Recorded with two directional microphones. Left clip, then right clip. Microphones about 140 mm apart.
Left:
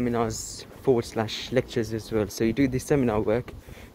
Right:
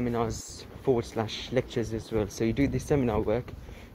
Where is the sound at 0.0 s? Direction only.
50° left (ahead or behind).